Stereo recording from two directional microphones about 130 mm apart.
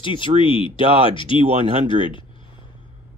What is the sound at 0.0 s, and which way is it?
Speech, 40° left (ahead or behind).